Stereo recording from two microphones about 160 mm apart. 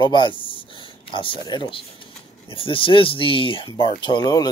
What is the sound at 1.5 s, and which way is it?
Speech, 30° left (ahead or behind).